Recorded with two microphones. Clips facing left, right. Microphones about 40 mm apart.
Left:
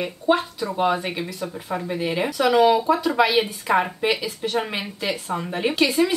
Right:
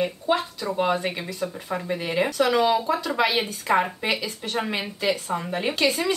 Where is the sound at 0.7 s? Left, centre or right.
Centre.